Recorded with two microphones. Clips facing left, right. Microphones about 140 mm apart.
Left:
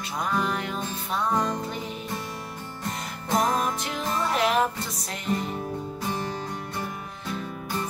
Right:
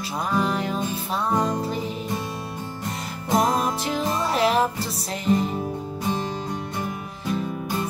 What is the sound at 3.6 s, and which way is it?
Music, 35° right (ahead or behind).